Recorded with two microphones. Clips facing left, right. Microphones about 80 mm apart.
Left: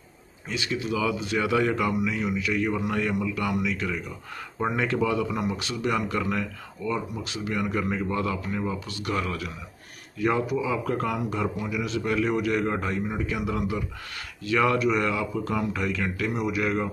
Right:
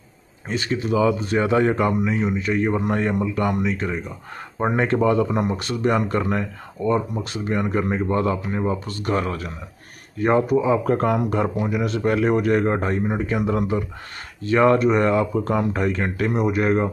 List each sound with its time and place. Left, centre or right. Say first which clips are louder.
0.5 s speech: right 6 dB; right